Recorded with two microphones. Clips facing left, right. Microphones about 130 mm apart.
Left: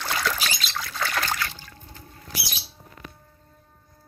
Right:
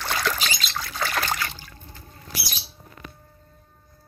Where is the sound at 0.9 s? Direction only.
15° right (ahead or behind).